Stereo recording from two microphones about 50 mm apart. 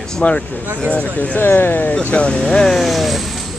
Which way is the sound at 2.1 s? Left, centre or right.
Left.